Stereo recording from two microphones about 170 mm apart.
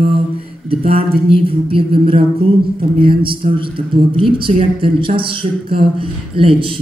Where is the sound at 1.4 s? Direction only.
35° right (ahead or behind).